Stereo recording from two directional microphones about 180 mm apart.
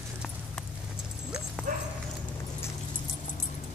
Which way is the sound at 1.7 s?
50° right (ahead or behind).